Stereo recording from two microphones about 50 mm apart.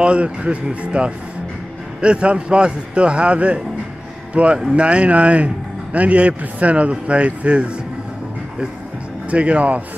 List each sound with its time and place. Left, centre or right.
0.0 s a man's voice: right
9.3 s a man's voice: right